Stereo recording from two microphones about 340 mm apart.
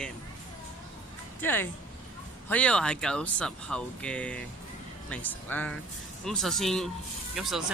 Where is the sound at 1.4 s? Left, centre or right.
Centre.